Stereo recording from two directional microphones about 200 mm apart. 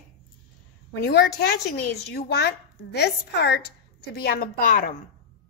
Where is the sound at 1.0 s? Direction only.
55° left (ahead or behind).